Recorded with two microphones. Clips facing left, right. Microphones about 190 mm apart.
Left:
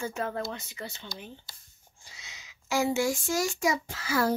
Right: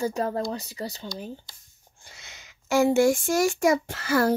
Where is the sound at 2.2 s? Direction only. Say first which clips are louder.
Even; 55° right (ahead or behind).